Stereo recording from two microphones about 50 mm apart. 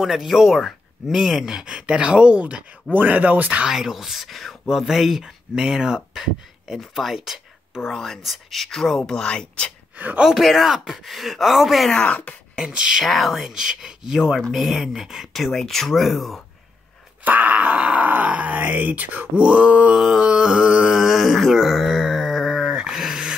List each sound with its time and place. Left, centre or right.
0.0 s speech: centre; by 3.6 s right
3.7 s speech: centre
9.9 s speech: right
10.2 s speech: centre
11.9 s speech: left
12.5 s speech: centre
13.0 s speech: centre
17.2 s speech: right
19.3 s speech: right
20.0 s speech: centre
20.9 s a sound: centre